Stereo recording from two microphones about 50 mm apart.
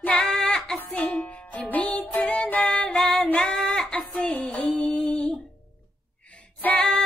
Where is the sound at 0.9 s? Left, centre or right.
Left.